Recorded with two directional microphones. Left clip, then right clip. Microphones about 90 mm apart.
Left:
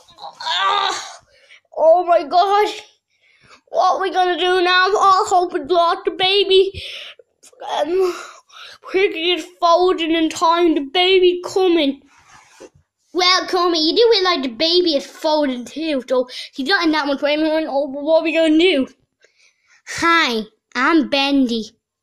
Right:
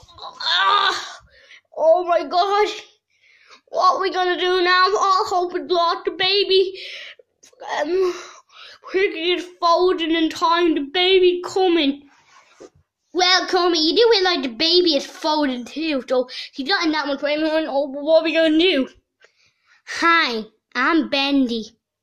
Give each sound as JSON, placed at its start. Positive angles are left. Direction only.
{"t": 0.2, "sound": "a sound", "side_deg": 10}
{"t": 1.7, "sound": "a sound", "side_deg": 45}
{"t": 2.0, "sound": "speech", "side_deg": 30}
{"t": 3.4, "sound": "speech", "side_deg": 20}
{"t": 4.9, "sound": "speech", "side_deg": 50}
{"t": 8.5, "sound": "speech", "side_deg": 40}
{"t": 11.1, "sound": "a woman's voice", "side_deg": 25}
{"t": 12.6, "sound": "a sound", "side_deg": 15}
{"t": 13.3, "sound": "a child's voice", "side_deg": 10}
{"t": 16.9, "sound": "a woman's voice", "side_deg": 90}
{"t": 17.5, "sound": "a child's voice", "side_deg": 15}
{"t": 18.4, "sound": "a woman's voice", "side_deg": 30}
{"t": 20.2, "sound": "a child's voice", "side_deg": 60}
{"t": 21.0, "sound": "speech", "side_deg": 35}